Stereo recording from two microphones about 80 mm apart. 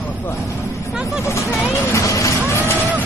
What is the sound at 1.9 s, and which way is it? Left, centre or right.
Vehicle, left.